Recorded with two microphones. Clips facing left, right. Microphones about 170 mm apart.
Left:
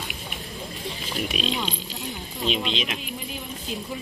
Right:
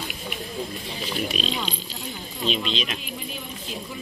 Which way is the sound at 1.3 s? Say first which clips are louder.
Left 1 dB; 10° left (ahead or behind).